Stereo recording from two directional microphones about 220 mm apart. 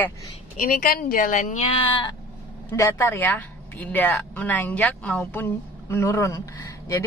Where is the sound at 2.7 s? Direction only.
10° left (ahead or behind).